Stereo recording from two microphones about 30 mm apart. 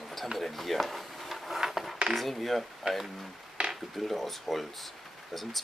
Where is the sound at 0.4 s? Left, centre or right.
Centre.